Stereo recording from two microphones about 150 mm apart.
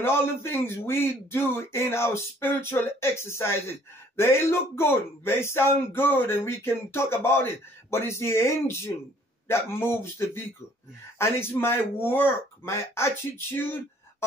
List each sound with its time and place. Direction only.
0.0 s speech: 15° left (ahead or behind)